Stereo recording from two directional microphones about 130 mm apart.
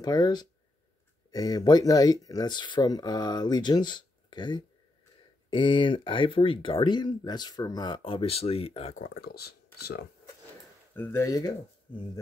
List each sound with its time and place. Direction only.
0.0 s speech: 30° left (ahead or behind); by 8.9 s 50° left (ahead or behind)
11.0 s speech: 20° left (ahead or behind)